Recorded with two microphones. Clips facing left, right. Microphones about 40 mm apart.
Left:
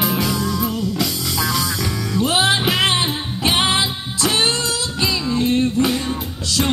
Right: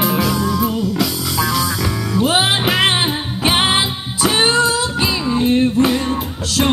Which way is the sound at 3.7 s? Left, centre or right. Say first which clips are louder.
Right 2 dB; centre.